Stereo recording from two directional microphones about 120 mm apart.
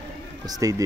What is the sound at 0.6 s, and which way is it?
Speech, 30° right (ahead or behind).